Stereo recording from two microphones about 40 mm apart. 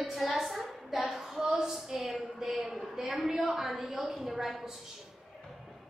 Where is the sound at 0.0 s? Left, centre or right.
Centre.